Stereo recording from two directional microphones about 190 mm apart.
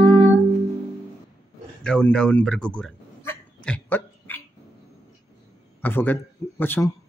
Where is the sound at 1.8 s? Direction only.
5° left (ahead or behind).